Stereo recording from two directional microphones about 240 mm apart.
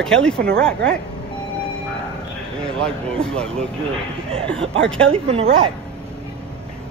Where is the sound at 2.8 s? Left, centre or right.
Centre.